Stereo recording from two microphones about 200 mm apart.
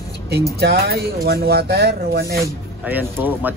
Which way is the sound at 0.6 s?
50° right (ahead or behind).